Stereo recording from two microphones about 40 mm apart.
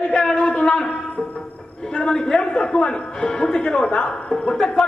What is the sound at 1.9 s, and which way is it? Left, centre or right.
A man's voice, centre.